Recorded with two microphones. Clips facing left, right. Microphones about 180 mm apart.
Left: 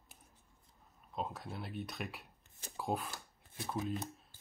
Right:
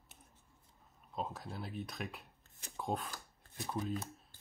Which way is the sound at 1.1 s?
Centre (ahead or behind).